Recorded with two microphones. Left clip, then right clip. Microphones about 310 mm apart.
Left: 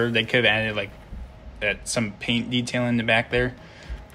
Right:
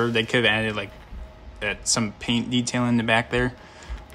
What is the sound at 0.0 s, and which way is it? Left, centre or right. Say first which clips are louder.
Speech: left 1 dB; centre.